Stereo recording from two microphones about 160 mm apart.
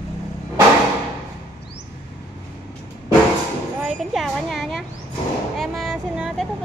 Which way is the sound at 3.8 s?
Centre (ahead or behind).